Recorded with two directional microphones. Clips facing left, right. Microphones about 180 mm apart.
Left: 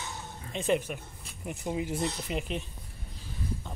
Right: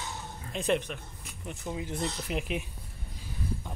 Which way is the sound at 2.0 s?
Centre (ahead or behind).